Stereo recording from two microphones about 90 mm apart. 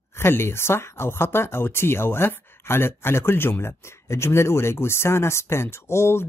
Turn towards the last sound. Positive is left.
turn(degrees=30)  # may be behind; listen again after turning